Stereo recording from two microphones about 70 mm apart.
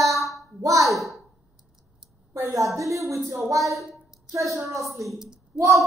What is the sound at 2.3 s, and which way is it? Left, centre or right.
A woman's voice, right.